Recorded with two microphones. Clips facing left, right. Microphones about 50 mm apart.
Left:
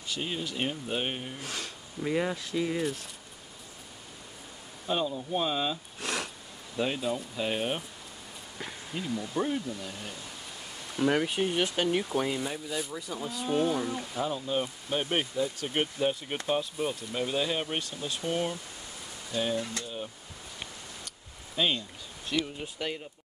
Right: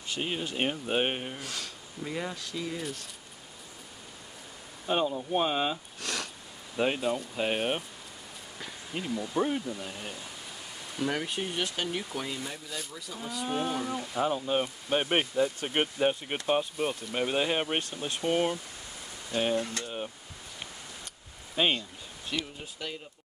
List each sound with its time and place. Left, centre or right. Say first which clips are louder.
0.2 s speech: right 2 dB; right
1.4 s speech: left 1 dB; centre
4.8 s speech: right 2 dB; right
5.9 s sniff: left 2 dB; centre
6.8 s speech: right 2 dB; right
9.1 s speech: right 1 dB; centre
11.1 s speech: left 6 dB; centre
13.5 s speech: left 4 dB; centre
13.7 s speech: left 1 dB; centre
14.2 s speech: right 3 dB; right
21.5 s speech: right 1 dB; right
22.8 s speech: left 4 dB; left